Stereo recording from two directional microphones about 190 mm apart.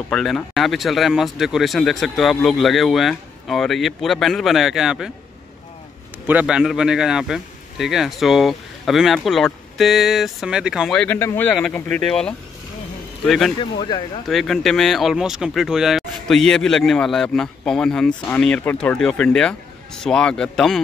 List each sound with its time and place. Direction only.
0.1 s speech: centre (ahead or behind)
6.2 s speech: 5° right (ahead or behind)
13.6 s speech: 25° left (ahead or behind)
14.2 s speech: centre (ahead or behind)